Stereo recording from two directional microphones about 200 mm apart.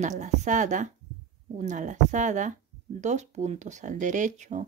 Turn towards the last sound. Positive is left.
turn(degrees=-35)  # may be behind; listen again after turning